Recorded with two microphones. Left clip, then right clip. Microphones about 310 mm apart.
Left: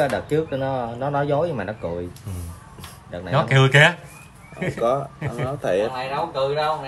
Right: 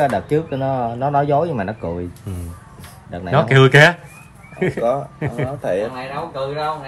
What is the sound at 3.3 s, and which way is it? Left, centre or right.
Speech, centre.